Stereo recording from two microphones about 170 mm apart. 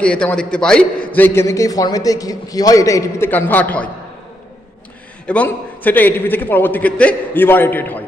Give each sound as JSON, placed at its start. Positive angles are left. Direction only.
{"t": 0.0, "sound": "a man's voice", "side_deg": 5}
{"t": 5.2, "sound": "a man's voice", "side_deg": 10}